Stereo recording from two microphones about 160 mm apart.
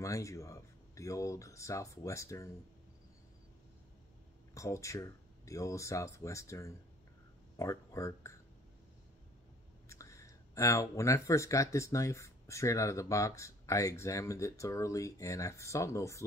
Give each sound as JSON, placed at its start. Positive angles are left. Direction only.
{"t": 0.0, "sound": "speech", "side_deg": 20}
{"t": 4.6, "sound": "speech", "side_deg": 20}
{"t": 9.8, "sound": "speech", "side_deg": 20}